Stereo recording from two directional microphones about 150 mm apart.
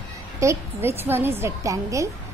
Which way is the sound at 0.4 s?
20° right (ahead or behind).